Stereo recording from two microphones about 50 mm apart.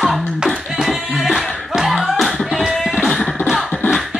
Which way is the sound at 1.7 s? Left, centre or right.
Centre.